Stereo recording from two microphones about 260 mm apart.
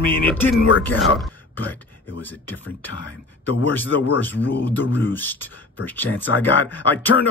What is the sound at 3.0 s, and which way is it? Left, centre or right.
Speech, left.